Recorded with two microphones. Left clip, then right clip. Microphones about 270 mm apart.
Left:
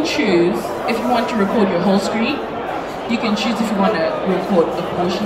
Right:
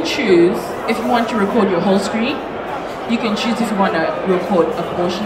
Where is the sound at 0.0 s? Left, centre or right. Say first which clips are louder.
Right 2 dB; centre.